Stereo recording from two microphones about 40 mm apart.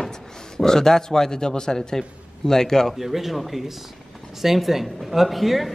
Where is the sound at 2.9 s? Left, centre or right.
Centre.